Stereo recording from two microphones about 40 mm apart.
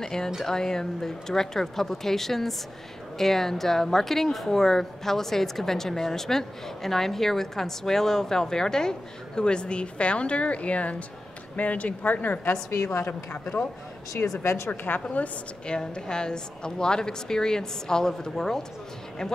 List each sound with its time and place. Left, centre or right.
0.0 s a woman's voice: centre; by 13.6 s left
14.2 s a woman's voice: left
15.6 s a woman's voice: left